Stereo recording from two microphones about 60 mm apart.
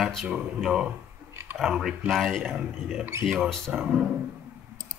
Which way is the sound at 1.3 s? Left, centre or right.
Right.